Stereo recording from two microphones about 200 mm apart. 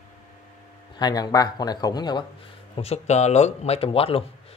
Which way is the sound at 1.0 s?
20° left (ahead or behind).